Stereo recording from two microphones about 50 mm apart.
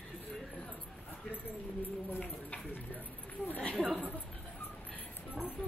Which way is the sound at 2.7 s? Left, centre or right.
Left.